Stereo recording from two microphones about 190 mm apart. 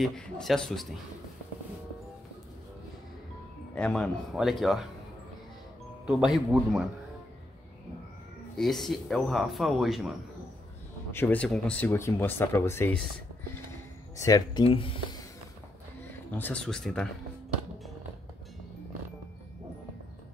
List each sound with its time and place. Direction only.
0.0 s speech: centre (ahead or behind)
3.7 s speech: 5° left (ahead or behind)
6.0 s speech: 5° right (ahead or behind)
8.5 s speech: centre (ahead or behind)
11.1 s speech: 10° left (ahead or behind)
14.1 s speech: 20° left (ahead or behind)
16.3 s speech: 5° left (ahead or behind)